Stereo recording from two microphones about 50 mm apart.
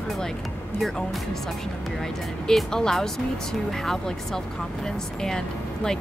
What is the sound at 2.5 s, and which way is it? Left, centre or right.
Speech, centre.